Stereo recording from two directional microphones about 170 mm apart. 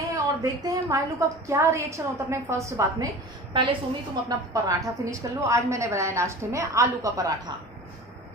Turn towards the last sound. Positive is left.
turn(degrees=-20)  # may be behind; listen again after turning